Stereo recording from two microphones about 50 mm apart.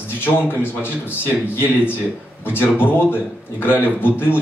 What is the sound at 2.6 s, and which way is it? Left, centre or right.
A man's voice, left.